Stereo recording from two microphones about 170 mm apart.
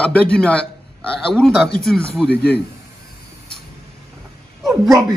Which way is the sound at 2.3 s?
70° left (ahead or behind).